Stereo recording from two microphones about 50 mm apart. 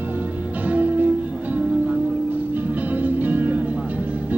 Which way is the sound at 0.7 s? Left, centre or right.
Right.